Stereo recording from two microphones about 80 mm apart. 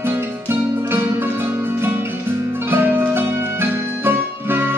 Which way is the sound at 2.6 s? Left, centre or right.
Right.